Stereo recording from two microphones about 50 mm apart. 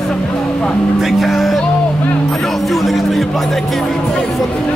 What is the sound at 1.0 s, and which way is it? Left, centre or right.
Speech, centre.